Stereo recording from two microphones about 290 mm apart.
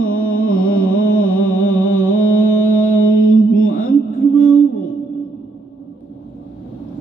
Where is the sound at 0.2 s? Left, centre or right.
Left.